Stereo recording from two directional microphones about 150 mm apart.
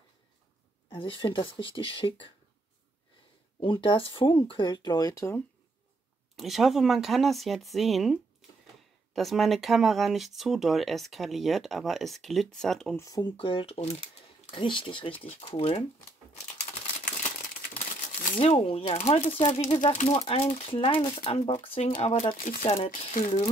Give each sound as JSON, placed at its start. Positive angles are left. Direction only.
{"t": 0.8, "sound": "speech", "side_deg": 35}
{"t": 3.5, "sound": "speech", "side_deg": 35}
{"t": 6.3, "sound": "speech", "side_deg": 0}
{"t": 12.9, "sound": "speech", "side_deg": 25}
{"t": 16.5, "sound": "crumpling", "side_deg": 55}
{"t": 18.4, "sound": "speech", "side_deg": 40}
{"t": 22.8, "sound": "speech", "side_deg": 60}